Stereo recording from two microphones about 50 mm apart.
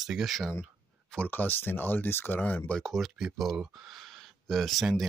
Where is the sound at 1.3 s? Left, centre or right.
Left.